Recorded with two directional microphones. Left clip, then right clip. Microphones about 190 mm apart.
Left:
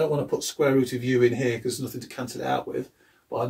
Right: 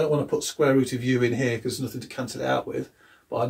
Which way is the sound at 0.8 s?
5° right (ahead or behind).